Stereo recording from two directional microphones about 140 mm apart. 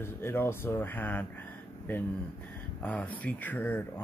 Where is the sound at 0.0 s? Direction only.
15° left (ahead or behind).